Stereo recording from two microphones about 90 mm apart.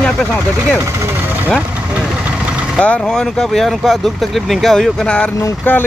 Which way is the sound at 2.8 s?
10° left (ahead or behind).